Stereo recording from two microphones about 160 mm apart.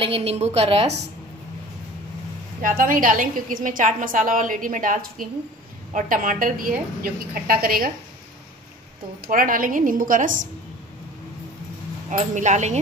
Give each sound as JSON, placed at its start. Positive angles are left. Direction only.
{"t": 0.0, "sound": "a woman's voice", "side_deg": -40}
{"t": 2.8, "sound": "a woman's voice", "side_deg": -60}
{"t": 9.2, "sound": "a woman's voice", "side_deg": -60}
{"t": 12.1, "sound": "speech", "side_deg": -50}